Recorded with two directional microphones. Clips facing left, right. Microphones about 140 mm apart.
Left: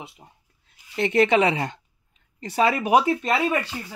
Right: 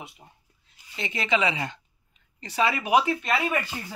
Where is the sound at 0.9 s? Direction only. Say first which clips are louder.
Left 8 dB; 60° left (ahead or behind); by 3.1 s 45° left (ahead or behind).